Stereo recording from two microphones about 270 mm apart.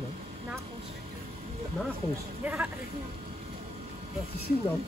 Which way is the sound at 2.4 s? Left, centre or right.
Centre.